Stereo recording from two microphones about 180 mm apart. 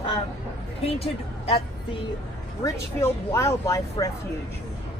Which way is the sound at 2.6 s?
15° left (ahead or behind).